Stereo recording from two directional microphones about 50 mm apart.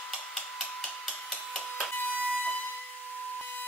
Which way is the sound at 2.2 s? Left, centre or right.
Left.